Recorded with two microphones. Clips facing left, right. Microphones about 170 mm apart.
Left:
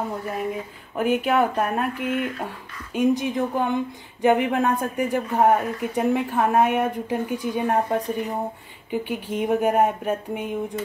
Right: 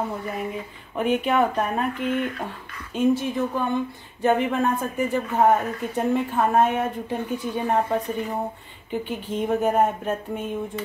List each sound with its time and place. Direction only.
0.9 s speech: 5° left (ahead or behind)